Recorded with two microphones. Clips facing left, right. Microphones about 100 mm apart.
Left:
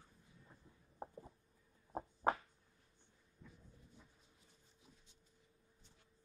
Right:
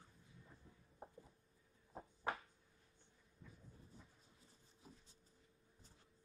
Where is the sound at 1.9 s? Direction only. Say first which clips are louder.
Left 8 dB; 45° left (ahead or behind).